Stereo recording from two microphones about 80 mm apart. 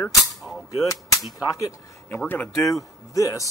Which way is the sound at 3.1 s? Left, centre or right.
Left.